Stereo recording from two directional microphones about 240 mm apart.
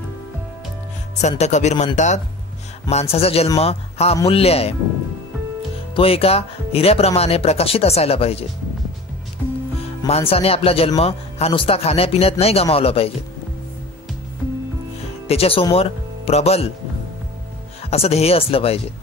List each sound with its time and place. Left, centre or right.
1.2 s a man's voice: left
5.9 s a man's voice: left
10.0 s a man's voice: left
15.2 s speech: left
17.8 s a man's voice: left